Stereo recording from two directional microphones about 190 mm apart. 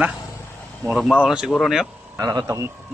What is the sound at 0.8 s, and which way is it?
Speech, centre (ahead or behind).